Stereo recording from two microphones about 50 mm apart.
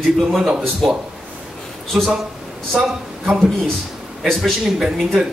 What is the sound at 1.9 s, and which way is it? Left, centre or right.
Speech, centre.